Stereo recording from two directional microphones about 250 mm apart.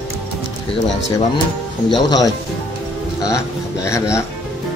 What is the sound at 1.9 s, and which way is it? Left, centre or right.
Speech, centre.